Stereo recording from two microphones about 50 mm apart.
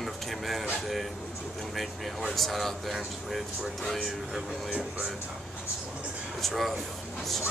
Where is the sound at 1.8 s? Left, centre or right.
Centre.